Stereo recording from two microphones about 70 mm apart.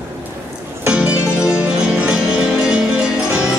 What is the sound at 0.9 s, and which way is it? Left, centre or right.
Music, centre.